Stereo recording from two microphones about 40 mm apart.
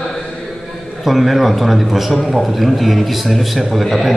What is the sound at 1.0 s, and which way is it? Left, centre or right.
A man's voice, centre.